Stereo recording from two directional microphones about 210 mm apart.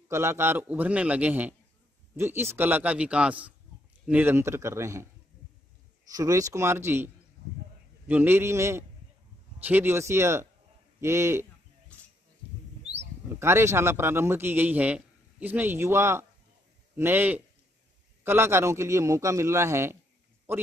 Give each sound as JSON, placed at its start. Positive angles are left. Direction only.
{"t": 0.1, "sound": "a man's voice", "side_deg": -10}
{"t": 6.1, "sound": "a man's voice", "side_deg": -15}
{"t": 8.1, "sound": "a man's voice", "side_deg": -10}
{"t": 11.9, "sound": "a sound", "side_deg": 5}
{"t": 13.4, "sound": "a man's voice", "side_deg": -10}